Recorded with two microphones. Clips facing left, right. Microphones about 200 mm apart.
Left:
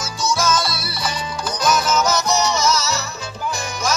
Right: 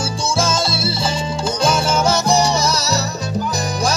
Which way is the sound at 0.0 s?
30° right (ahead or behind).